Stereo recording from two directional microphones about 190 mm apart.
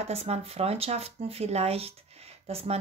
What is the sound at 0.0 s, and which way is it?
Speech, 35° right (ahead or behind).